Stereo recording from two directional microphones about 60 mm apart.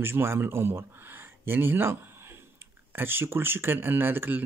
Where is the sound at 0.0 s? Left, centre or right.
Right.